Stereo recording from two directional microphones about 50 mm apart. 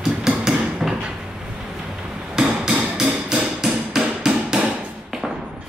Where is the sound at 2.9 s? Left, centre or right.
Centre.